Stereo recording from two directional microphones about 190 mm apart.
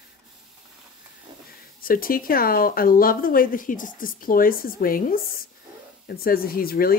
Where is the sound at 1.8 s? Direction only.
50° left (ahead or behind).